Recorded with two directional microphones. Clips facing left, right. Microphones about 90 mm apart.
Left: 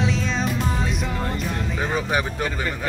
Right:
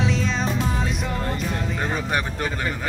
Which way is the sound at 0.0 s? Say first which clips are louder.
Even; centre (ahead or behind).